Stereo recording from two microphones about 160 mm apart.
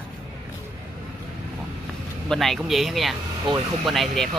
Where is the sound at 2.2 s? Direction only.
Centre (ahead or behind).